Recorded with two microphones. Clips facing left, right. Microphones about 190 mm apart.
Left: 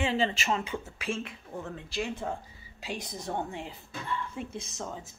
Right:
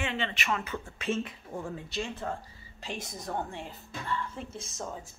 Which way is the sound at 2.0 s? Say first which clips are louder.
Left 2 dB; 10° left (ahead or behind).